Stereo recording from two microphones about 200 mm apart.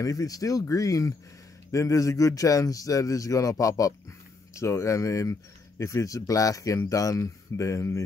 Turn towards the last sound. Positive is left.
turn(degrees=15)  # may be behind; listen again after turning